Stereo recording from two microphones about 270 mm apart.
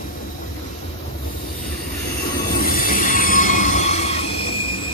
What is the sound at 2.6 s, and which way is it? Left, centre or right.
Train, left.